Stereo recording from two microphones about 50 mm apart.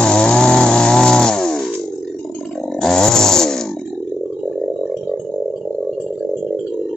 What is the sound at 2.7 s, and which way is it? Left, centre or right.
Chainsaw, centre.